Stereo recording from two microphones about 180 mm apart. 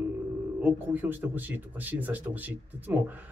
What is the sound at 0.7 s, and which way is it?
Speech, 10° right (ahead or behind).